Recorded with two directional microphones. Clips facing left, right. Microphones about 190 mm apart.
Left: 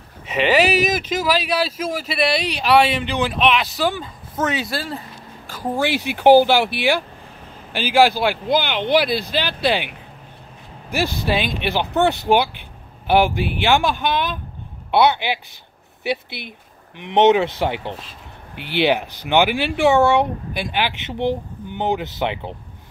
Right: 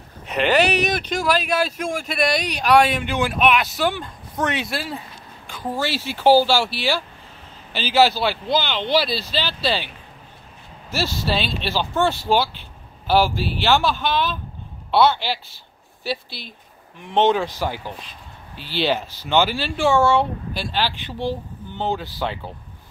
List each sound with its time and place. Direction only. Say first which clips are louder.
0.3 s speech: left 1 dB; centre (ahead or behind)
5.5 s speech: left 4 dB; 15° left (ahead or behind)
9.0 s speech: left 4 dB; 55° left (ahead or behind)
9.6 s speech: left 5 dB; 15° left (ahead or behind)
11.2 s speech: left 3 dB; 15° left (ahead or behind)
16.3 s speech: left 4 dB; 60° left (ahead or behind)
17.1 s speech: left 4 dB; 20° left (ahead or behind)